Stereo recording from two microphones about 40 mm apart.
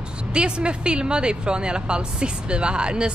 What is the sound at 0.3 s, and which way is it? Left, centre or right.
Speech, right.